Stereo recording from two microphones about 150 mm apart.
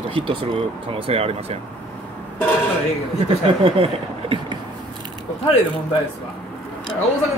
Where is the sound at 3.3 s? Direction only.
40° right (ahead or behind).